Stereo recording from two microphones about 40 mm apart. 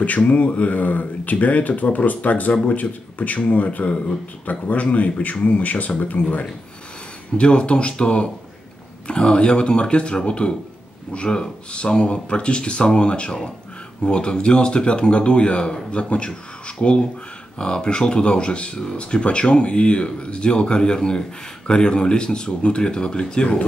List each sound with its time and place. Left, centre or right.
0.0 s speech: left
7.3 s speech: left